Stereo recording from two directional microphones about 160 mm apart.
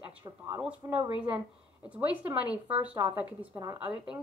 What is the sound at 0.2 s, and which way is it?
Speech, 25° right (ahead or behind).